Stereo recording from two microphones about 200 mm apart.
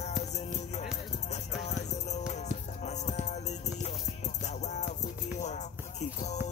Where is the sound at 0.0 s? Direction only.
35° left (ahead or behind).